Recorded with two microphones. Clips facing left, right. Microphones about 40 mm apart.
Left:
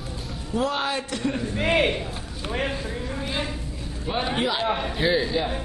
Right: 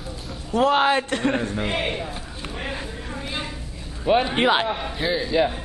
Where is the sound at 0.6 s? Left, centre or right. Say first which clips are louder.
Right 8 dB; right.